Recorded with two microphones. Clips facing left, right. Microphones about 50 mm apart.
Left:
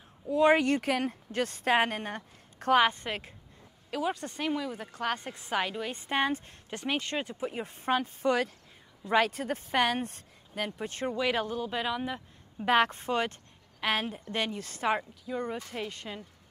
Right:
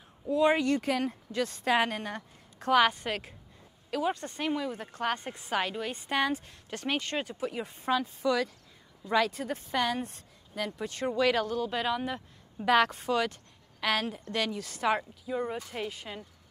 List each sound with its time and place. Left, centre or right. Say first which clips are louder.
0.5 s speech: left 2 dB; left
2.6 s a woman's voice: left 2 dB; left
3.0 s speech: right 2 dB; centre
5.9 s speech: even; left
6.8 s speech: even; centre
7.8 s speech: left 1 dB; left
10.6 s speech: even; left
11.8 s speech: right 1 dB; centre
12.5 s speech: right 1 dB; left
13.7 s speech: right 1 dB; centre
15.0 s speech: right 1 dB; centre